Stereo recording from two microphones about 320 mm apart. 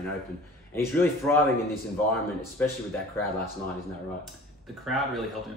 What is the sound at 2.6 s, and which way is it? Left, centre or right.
Speech, centre.